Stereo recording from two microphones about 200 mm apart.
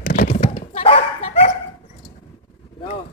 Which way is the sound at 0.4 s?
30° left (ahead or behind).